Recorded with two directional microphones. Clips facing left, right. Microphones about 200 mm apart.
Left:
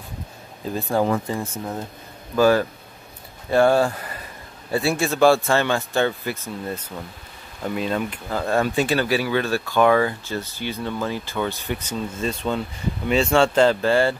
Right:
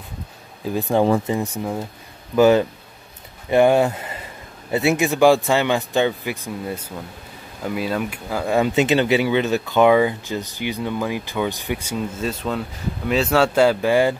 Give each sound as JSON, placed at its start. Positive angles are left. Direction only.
{"t": 0.7, "sound": "speech", "side_deg": -15}
{"t": 1.0, "sound": "speech", "side_deg": -30}
{"t": 1.3, "sound": "speech", "side_deg": -15}